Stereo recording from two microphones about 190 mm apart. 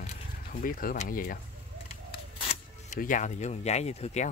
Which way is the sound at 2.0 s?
25° left (ahead or behind).